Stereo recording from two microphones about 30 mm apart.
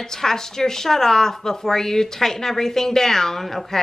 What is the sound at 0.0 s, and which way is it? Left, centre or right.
Speech, centre.